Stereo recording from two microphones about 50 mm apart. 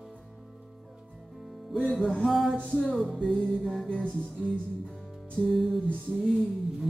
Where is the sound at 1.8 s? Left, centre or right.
Centre.